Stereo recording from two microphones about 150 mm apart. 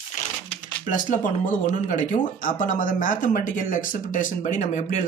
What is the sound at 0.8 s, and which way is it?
Speech, 60° left (ahead or behind).